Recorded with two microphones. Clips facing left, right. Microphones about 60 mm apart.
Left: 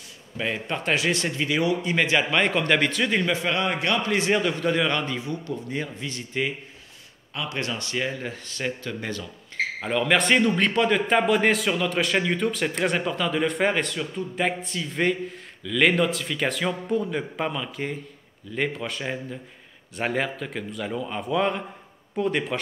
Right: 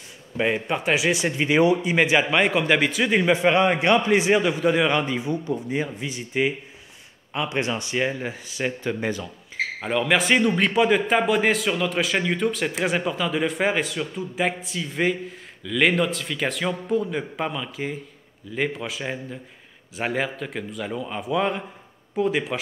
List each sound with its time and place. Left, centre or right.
0.4 s a man's voice: right
0.7 s a man's voice: centre
3.3 s a man's voice: right
9.8 s a man's voice: centre